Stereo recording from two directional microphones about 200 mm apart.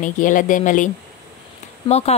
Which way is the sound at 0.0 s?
40° left (ahead or behind).